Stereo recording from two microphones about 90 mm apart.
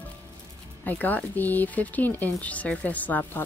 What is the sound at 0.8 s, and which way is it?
Speech, 20° left (ahead or behind).